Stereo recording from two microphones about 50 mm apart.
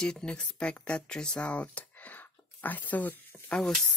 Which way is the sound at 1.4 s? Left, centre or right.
Left.